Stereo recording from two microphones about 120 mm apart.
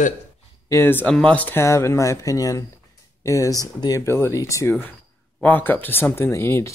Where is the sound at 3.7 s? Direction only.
35° left (ahead or behind).